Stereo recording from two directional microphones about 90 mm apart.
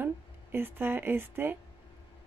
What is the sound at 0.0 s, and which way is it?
Speech, 25° right (ahead or behind).